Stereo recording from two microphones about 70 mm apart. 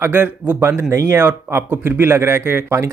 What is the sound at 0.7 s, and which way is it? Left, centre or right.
Speech, right.